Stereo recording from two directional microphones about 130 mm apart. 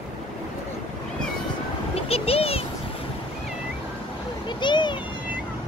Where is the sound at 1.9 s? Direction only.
50° left (ahead or behind).